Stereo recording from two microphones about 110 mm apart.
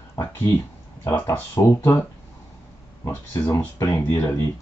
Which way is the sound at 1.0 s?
25° left (ahead or behind).